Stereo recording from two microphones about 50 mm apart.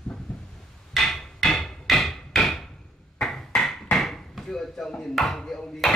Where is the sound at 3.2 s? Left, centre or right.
Centre.